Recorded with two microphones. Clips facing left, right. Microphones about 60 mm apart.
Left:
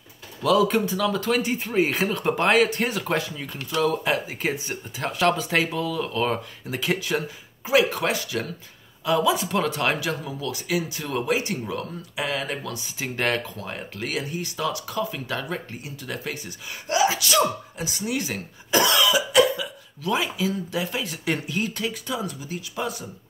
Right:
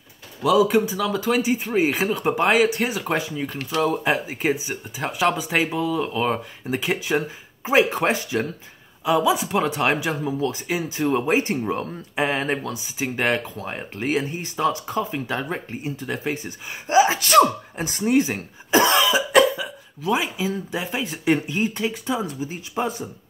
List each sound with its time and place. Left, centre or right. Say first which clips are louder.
0.4 s speech: right 2 dB; centre
4.6 s speech: right 1 dB; centre
5.6 s speech: right 2 dB; right
9.0 s speech: right 2 dB; centre; by 12.5 s right
12.6 s speech: right 4 dB; centre; by 17.3 s right
17.3 s speech: right 6 dB; right
18.1 s speech: right 8 dB; right